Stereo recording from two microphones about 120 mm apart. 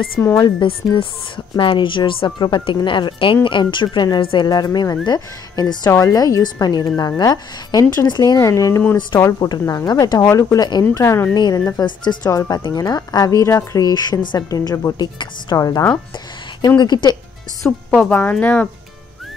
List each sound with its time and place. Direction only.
0.4 s a woman's voice: 45° left (ahead or behind); by 11.2 s 25° left (ahead or behind)
11.3 s speech: 35° left (ahead or behind)
17.6 s speech: 10° left (ahead or behind)